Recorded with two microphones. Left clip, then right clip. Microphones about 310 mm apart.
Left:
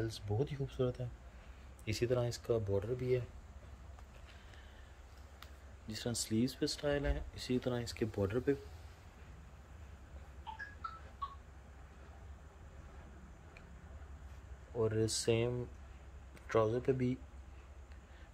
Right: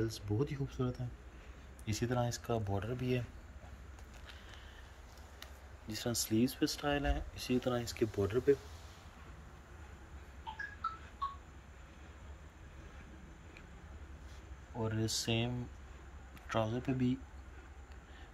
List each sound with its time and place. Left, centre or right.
0.0 s speech: centre
5.9 s speech: centre
14.8 s speech: centre